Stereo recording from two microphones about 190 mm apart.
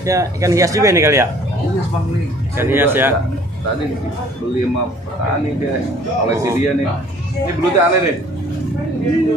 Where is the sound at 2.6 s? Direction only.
10° right (ahead or behind).